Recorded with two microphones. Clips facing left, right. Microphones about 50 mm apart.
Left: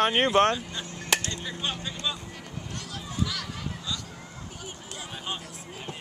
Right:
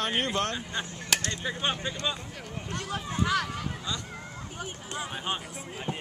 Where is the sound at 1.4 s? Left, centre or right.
Right.